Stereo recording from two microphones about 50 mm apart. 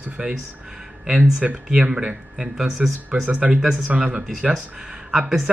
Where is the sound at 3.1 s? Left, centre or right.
Right.